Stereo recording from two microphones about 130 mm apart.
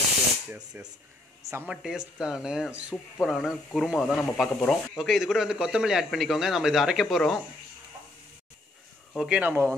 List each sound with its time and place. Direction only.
0.8 s speech: 15° right (ahead or behind)
1.7 s speech: 5° right (ahead or behind)
9.1 s speech: centre (ahead or behind)
9.4 s speech: 15° right (ahead or behind)